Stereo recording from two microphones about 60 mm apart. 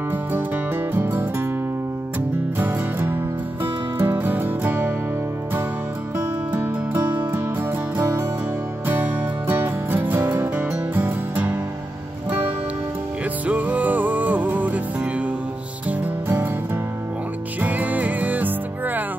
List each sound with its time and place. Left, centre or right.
0.9 s music: right
2.5 s music: right
6.1 s music: right
8.8 s music: right
13.5 s music: right
17.6 s music: right